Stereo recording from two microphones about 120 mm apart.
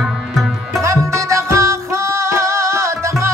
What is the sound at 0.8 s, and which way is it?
Music, 25° right (ahead or behind).